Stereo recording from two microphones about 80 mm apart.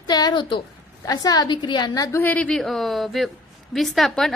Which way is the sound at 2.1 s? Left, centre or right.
Left.